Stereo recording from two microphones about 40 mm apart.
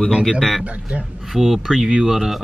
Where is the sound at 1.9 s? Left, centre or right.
Centre.